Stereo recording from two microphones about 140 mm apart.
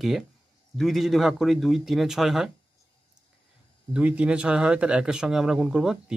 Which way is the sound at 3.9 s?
10° right (ahead or behind).